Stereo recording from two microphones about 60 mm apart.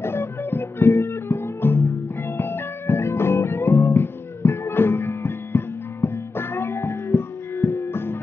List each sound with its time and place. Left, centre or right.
0.0 s music: left